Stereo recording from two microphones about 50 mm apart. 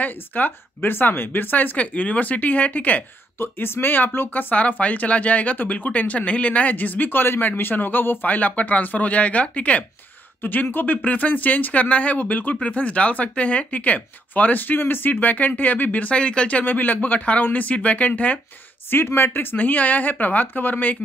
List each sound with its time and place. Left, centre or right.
0.0 s speech: left
3.3 s speech: left
10.4 s speech: left
16.6 s speech: left
18.9 s speech: left